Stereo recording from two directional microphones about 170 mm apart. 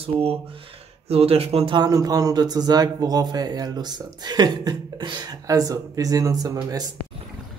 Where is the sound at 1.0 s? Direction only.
35° right (ahead or behind).